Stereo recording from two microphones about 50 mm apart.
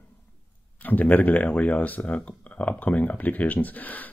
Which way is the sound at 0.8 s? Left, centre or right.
Left.